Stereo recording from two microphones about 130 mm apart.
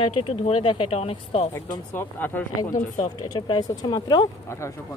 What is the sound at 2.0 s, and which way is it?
Speech, 15° left (ahead or behind).